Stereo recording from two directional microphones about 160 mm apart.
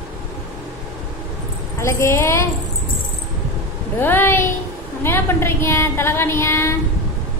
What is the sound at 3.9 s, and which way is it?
Speech, 15° left (ahead or behind).